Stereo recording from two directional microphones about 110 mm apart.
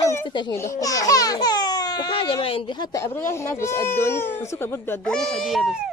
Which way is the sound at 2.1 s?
55° left (ahead or behind).